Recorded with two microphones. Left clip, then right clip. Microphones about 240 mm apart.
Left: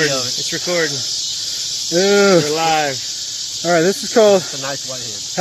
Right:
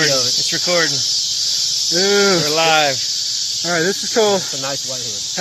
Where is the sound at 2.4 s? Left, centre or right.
Centre.